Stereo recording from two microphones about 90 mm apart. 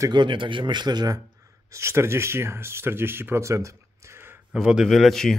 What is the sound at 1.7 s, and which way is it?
Speech, 30° right (ahead or behind).